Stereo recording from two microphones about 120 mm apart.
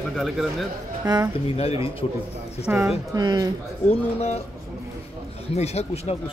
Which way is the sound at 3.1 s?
35° right (ahead or behind).